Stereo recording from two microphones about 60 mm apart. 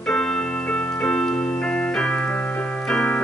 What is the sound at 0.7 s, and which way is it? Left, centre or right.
Keyboard, centre.